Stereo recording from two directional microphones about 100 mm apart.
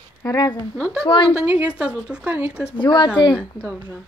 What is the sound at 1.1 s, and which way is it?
Speech, 55° left (ahead or behind).